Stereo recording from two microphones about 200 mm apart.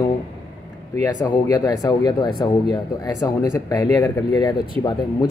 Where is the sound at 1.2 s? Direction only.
20° left (ahead or behind).